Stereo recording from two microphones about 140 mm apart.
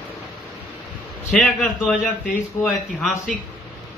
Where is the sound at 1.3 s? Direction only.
10° left (ahead or behind).